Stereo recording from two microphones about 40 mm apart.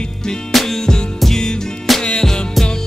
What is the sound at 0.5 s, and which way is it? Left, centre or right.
Music, centre.